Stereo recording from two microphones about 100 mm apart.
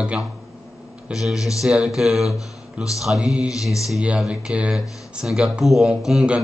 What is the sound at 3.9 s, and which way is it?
Speech, 10° right (ahead or behind).